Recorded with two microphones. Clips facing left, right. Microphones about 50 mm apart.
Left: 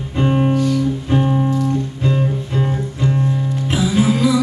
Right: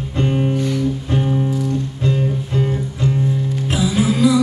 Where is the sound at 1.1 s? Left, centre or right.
Centre.